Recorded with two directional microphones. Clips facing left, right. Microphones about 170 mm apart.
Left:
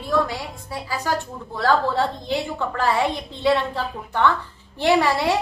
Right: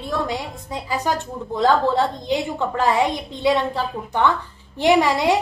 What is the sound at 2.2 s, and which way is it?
A woman's voice, 15° right (ahead or behind).